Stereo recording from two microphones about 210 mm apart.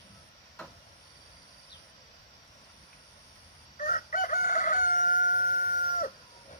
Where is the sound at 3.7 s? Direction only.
40° left (ahead or behind).